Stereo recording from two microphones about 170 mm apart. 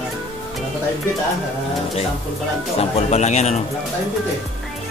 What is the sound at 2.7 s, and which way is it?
Speech, 40° left (ahead or behind).